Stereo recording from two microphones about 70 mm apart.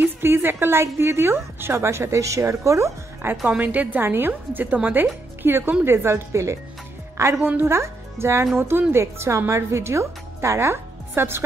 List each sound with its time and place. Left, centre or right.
0.0 s a woman's voice: right
3.4 s a woman's voice: right